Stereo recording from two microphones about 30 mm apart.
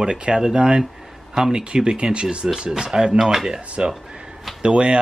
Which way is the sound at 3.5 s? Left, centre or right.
Right.